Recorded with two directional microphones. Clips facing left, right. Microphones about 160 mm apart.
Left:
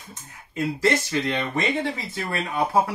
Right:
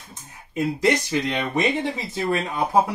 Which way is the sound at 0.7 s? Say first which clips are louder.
Right 1 dB; 15° right (ahead or behind).